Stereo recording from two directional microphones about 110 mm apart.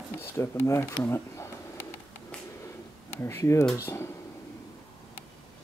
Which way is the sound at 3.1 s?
25° left (ahead or behind).